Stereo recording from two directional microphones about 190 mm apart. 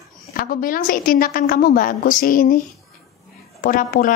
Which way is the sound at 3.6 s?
45° left (ahead or behind).